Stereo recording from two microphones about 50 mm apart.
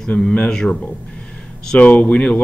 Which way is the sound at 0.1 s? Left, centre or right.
Left.